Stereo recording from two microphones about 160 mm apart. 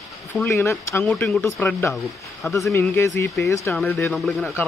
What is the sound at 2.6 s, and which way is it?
Speech, 20° left (ahead or behind).